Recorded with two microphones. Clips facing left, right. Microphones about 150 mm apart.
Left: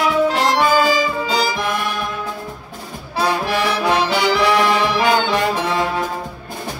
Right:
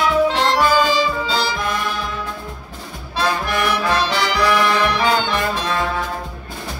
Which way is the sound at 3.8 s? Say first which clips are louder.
Left 3 dB; 15° left (ahead or behind).